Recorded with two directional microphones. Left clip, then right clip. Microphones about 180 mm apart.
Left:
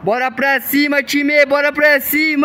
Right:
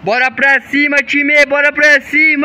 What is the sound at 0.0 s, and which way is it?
A man's voice, 10° left (ahead or behind).